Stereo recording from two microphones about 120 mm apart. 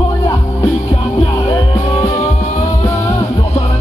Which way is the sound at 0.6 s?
60° left (ahead or behind).